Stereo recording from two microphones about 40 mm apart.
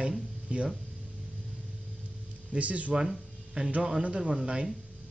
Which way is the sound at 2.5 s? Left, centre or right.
Right.